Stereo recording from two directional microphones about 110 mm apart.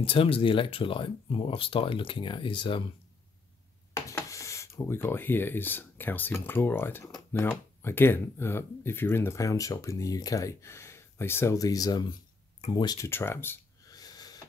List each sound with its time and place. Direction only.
0.0 s speech: 55° left (ahead or behind)
3.9 s speech: 30° left (ahead or behind)
11.5 s speech: 35° left (ahead or behind)
13.0 s speech: 25° left (ahead or behind)
13.8 s a sound: 35° left (ahead or behind)